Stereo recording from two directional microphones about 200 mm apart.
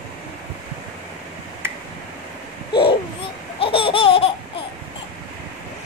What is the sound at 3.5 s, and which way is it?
Laughter, 25° left (ahead or behind).